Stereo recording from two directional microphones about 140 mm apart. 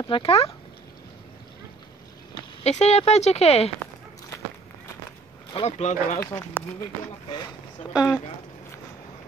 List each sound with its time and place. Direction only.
0.0 s speech: 40° left (ahead or behind)
2.6 s speech: 50° left (ahead or behind)
5.5 s speech: 45° left (ahead or behind)
6.1 s speech: 20° left (ahead or behind)
6.8 s speech: 35° left (ahead or behind)